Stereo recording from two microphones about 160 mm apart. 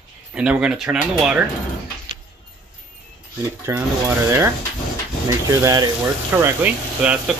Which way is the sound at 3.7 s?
15° right (ahead or behind).